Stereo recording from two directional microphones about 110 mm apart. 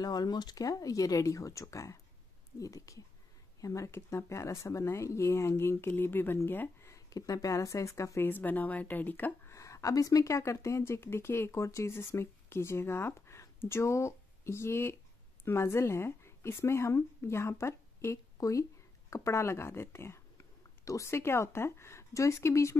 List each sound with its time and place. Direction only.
0.0 s speech: 40° left (ahead or behind); by 9.6 s 15° left (ahead or behind)
9.6 s a woman's voice: 30° left (ahead or behind)